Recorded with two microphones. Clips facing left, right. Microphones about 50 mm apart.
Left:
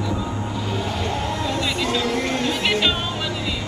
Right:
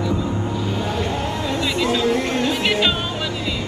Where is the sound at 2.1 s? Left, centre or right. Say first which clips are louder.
Right 3 dB; right.